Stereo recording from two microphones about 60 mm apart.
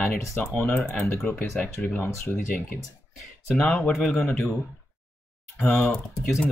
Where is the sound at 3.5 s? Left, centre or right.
Left.